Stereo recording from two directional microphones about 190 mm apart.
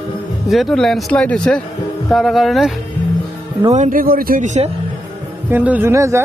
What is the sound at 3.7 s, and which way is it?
Speech, 45° right (ahead or behind).